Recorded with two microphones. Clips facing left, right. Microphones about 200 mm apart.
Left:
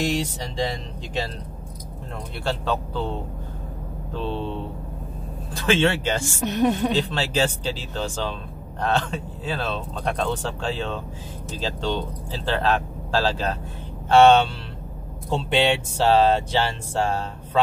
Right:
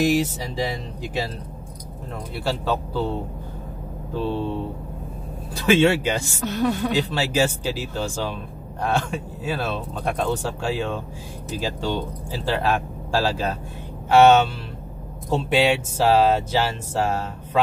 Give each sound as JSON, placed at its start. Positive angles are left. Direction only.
{"t": 0.1, "sound": "speech", "side_deg": -5}
{"t": 2.4, "sound": "speech", "side_deg": -10}
{"t": 4.1, "sound": "speech", "side_deg": -10}
{"t": 5.5, "sound": "speech", "side_deg": -10}
{"t": 6.4, "sound": "speech", "side_deg": 20}
{"t": 7.1, "sound": "speech", "side_deg": -10}